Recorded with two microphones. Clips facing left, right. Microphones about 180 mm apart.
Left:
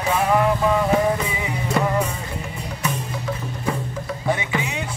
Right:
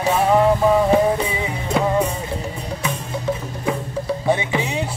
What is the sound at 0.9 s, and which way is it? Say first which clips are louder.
Music: right 3 dB; 30° right (ahead or behind).